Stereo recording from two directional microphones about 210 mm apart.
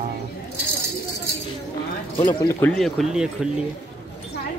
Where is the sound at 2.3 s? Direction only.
15° left (ahead or behind).